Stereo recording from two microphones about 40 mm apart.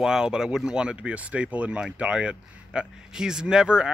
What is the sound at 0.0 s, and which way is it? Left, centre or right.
Speech, centre.